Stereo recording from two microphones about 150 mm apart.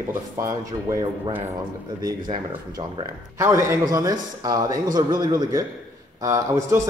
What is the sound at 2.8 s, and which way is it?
Speech, 40° right (ahead or behind).